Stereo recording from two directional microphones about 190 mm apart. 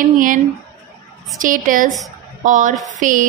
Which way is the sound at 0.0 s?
45° right (ahead or behind).